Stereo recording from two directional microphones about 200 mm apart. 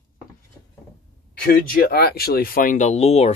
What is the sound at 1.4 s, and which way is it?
Speech, 45° left (ahead or behind).